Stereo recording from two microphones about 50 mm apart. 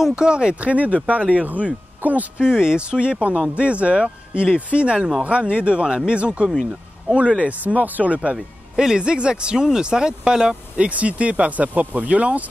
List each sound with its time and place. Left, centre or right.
0.0 s speech: centre
2.0 s speech: right
2.3 s speech: centre
8.7 s speech: centre
10.9 s speech: right